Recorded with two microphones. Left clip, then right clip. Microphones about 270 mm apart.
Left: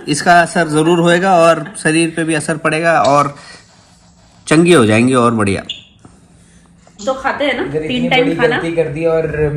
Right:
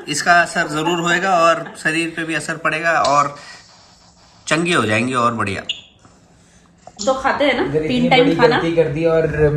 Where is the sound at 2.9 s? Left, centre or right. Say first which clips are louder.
Left 4 dB; left.